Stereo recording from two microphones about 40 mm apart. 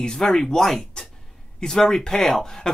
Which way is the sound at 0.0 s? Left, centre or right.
Centre.